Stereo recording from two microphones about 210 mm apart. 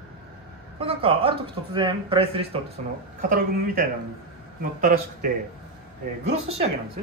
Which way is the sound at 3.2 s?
40° right (ahead or behind).